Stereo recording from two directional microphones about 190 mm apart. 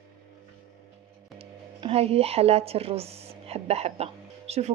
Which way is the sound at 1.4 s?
30° right (ahead or behind).